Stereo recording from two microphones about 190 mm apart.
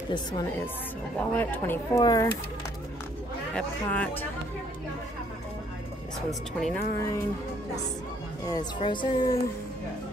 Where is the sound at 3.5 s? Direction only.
5° left (ahead or behind).